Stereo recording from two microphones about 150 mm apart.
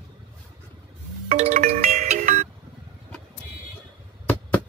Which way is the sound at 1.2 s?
55° right (ahead or behind).